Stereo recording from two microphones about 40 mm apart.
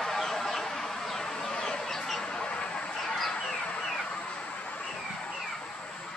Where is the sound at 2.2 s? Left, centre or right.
Left.